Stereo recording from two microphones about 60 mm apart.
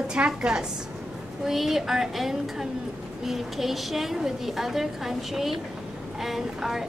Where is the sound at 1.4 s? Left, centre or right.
Centre.